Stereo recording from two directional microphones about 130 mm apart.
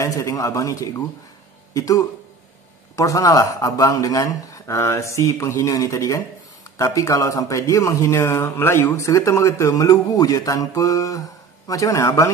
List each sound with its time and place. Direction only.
0.0 s a man's voice: 25° left (ahead or behind)